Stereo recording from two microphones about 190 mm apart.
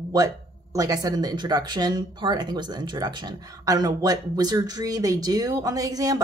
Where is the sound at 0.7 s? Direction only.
20° right (ahead or behind).